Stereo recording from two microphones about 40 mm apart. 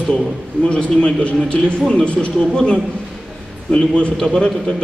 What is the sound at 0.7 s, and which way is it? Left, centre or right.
A man's voice, left.